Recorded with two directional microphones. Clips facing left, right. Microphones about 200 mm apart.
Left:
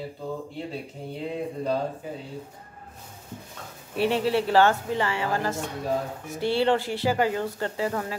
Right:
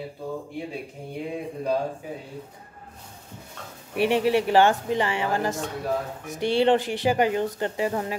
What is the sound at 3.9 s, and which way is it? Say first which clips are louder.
Speech: right 2 dB; 15° right (ahead or behind).